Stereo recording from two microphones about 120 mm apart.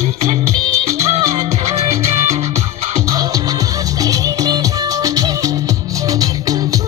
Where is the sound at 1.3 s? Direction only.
60° right (ahead or behind).